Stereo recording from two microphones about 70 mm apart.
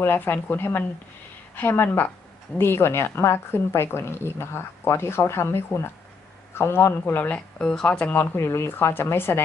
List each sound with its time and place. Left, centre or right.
0.0 s speech: left
7.2 s speech: centre
8.4 s speech: left